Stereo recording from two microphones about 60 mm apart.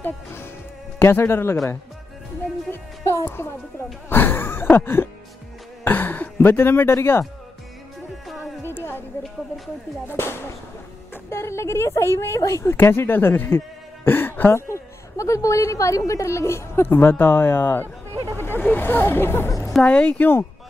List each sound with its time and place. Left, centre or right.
0.0 s speech: left
3.3 s speech: left
8.6 s a sound: left
10.0 s speech: left
12.7 s speech: left
14.0 s throat clearing: left
14.5 s a woman's voice: left
19.9 s speech: centre
20.2 s speech: left